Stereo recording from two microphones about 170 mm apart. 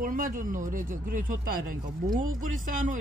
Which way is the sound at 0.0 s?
50° right (ahead or behind).